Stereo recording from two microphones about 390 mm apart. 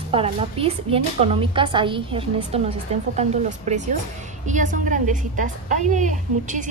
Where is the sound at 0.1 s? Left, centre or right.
Centre.